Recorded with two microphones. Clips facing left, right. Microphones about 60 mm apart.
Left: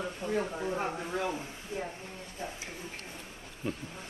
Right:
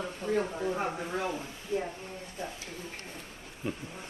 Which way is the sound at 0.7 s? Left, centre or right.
Centre.